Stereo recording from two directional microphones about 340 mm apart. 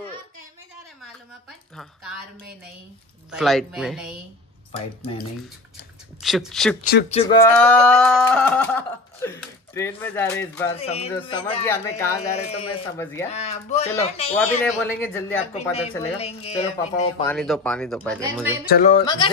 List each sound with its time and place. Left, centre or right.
3.3 s speech: centre
6.2 s speech: centre
6.8 s speech: left; by 10.7 s centre
10.8 s speech: centre
13.3 s speech: centre
14.3 s speech: centre
16.2 s speech: centre
17.3 s speech: centre
18.7 s speech: left